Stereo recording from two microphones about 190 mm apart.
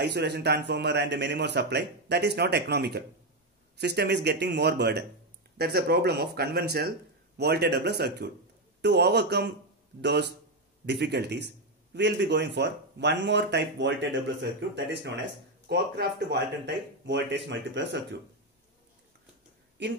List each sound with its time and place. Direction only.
0.0 s a man's voice: 60° right (ahead or behind)
19.8 s a man's voice: 65° right (ahead or behind)